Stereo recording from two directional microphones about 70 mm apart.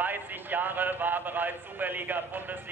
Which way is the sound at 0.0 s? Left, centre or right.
Right.